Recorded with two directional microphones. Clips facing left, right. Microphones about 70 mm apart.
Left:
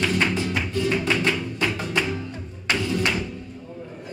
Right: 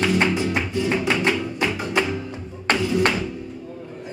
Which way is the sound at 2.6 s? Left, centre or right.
Right.